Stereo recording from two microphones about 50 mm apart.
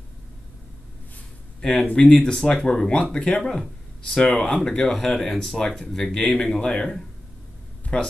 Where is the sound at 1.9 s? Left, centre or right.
Centre.